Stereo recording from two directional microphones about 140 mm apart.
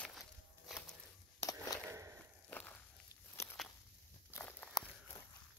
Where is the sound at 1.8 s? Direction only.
20° right (ahead or behind).